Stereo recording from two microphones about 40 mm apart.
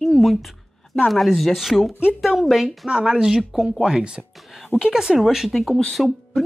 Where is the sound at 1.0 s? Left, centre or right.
Centre.